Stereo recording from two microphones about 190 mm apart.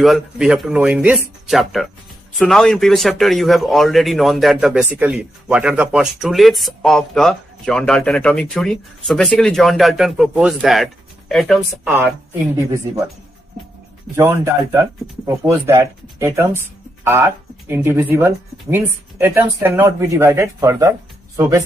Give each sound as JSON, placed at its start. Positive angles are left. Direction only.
{"t": 0.0, "sound": "speech", "side_deg": 0}
{"t": 14.1, "sound": "speech", "side_deg": -10}